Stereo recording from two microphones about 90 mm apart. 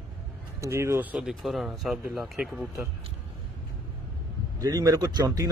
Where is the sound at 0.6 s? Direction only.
30° right (ahead or behind).